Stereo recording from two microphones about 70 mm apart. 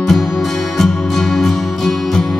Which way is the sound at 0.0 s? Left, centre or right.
Centre.